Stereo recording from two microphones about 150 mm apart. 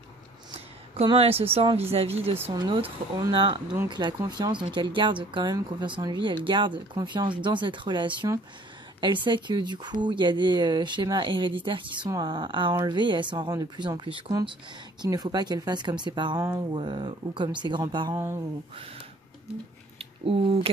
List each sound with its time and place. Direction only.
1.1 s speech: 40° right (ahead or behind)
2.5 s speech: 30° right (ahead or behind)
20.0 s speech: 40° right (ahead or behind)